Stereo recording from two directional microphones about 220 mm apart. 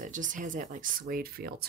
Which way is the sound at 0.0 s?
35° right (ahead or behind).